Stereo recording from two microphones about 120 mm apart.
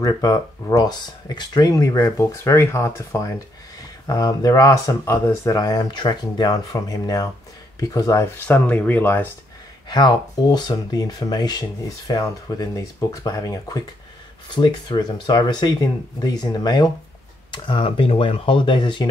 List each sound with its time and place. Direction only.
0.0 s speech: 30° left (ahead or behind)
8.5 s speech: 15° left (ahead or behind)
9.8 s speech: 35° left (ahead or behind)